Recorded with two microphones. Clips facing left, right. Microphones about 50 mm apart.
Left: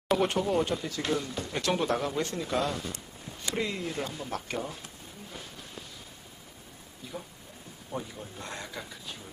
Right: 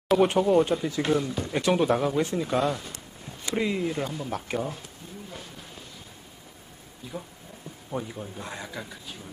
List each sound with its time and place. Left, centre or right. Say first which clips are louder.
0.2 s speech: right 6 dB; centre
7.0 s speech: right 3 dB; centre
8.4 s speech: even; centre